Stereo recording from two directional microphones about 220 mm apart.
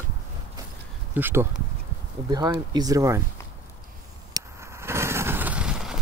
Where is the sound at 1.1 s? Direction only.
10° right (ahead or behind).